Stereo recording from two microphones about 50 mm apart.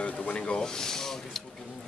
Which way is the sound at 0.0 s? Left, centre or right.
Left.